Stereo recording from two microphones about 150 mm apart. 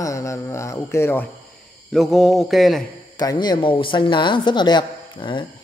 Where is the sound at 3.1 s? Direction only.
25° left (ahead or behind).